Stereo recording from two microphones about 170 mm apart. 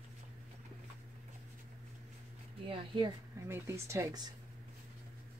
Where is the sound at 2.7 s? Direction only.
30° right (ahead or behind).